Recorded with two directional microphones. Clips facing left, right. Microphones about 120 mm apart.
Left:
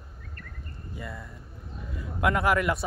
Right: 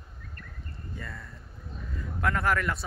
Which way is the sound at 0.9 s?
15° left (ahead or behind).